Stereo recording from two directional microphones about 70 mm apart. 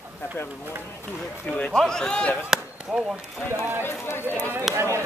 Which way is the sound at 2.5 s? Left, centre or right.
Centre.